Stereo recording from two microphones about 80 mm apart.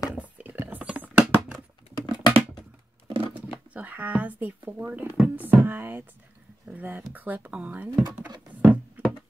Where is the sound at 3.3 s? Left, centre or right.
Centre.